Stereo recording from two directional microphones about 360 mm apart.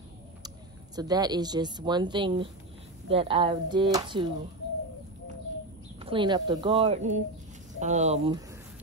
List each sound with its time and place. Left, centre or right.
0.9 s speech: centre
5.9 s speech: centre